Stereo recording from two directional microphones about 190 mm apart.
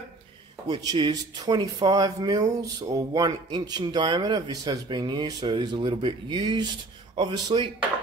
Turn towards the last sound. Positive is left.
turn(degrees=-25)  # may be behind; listen again after turning